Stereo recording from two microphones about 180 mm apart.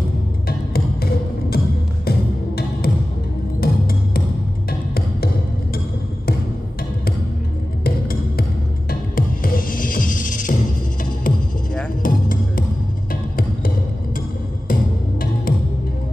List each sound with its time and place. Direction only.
0.5 s music: 55° left (ahead or behind)
7.8 s music: 55° left (ahead or behind)
14.7 s music: 50° left (ahead or behind)